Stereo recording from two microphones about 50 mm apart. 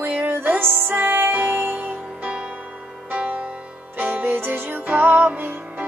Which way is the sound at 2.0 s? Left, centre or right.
Right.